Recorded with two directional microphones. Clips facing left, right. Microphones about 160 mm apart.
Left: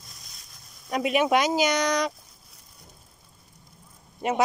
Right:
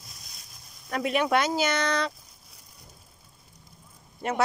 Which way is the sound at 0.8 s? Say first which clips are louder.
Left 3 dB; 15° left (ahead or behind).